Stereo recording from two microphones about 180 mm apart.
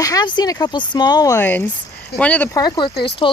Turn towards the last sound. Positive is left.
turn(degrees=65)  # may be behind; listen again after turning